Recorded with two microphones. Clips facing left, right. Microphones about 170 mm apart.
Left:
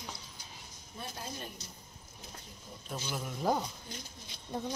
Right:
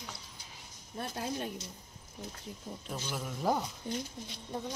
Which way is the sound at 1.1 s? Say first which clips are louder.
Right 8 dB; 70° right (ahead or behind).